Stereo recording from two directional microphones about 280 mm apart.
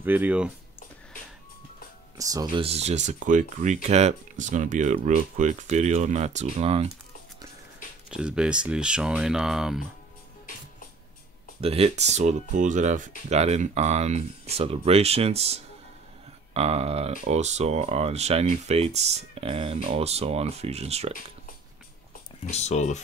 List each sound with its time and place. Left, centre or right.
0.0 s speech: centre
2.1 s speech: centre
8.1 s speech: centre
11.6 s speech: right
22.5 s speech: left